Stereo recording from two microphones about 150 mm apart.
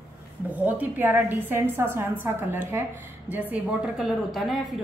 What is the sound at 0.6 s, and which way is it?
A woman's voice, 10° right (ahead or behind).